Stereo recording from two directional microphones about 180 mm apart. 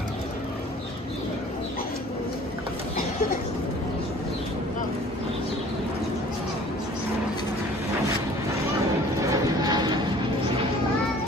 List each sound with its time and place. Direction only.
9.3 s vehicle: 20° right (ahead or behind)